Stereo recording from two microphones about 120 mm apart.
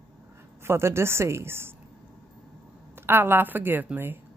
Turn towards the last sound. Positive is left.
turn(degrees=-15)  # may be behind; listen again after turning